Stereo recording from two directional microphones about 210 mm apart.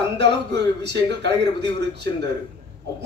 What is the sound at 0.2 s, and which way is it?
Speech, 55° right (ahead or behind).